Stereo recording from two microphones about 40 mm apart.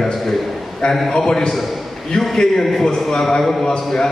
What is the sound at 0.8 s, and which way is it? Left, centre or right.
A man's voice, left.